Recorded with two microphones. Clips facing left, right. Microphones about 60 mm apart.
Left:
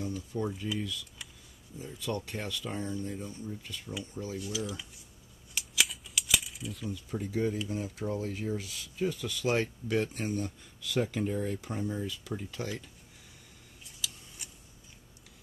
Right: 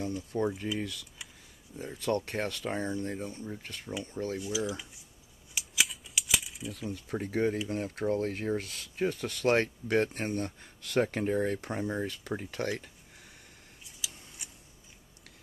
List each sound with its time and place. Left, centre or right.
0.3 s speech: right
0.7 s speech: right
4.4 s cutlery: centre
5.5 s camera: centre
5.9 s a sound: centre
6.8 s speech: right
14.0 s a sound: centre